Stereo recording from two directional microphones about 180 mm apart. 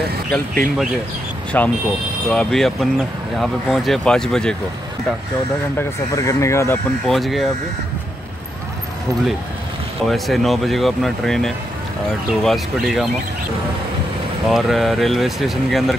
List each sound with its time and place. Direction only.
0.3 s speech: 5° left (ahead or behind)
5.8 s speech: 15° left (ahead or behind)
7.1 s speech: centre (ahead or behind)
10.0 s speech: centre (ahead or behind)
14.5 s speech: centre (ahead or behind)